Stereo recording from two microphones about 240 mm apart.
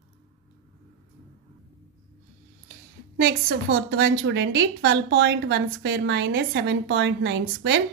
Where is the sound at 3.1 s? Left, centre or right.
Right.